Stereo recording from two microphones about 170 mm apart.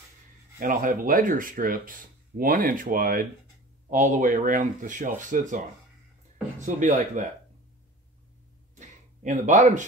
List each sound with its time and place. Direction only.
0.6 s speech: 50° right (ahead or behind)
6.6 s speech: 45° right (ahead or behind)
8.7 s a sound: 45° right (ahead or behind)